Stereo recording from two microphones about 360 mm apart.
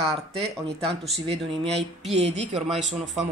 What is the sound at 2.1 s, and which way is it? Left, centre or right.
Speech, centre.